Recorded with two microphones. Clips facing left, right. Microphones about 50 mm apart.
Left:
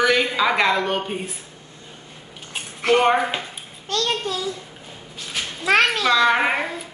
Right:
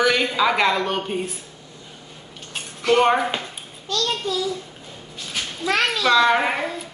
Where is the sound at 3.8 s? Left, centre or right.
Left.